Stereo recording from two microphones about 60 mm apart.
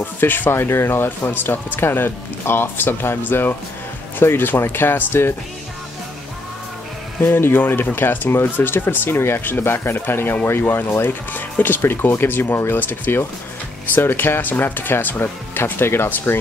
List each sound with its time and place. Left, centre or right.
0.0 s speech: left
7.2 s speech: left